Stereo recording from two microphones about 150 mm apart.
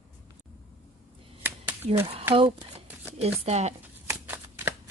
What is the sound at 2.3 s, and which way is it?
A woman's voice, 35° right (ahead or behind).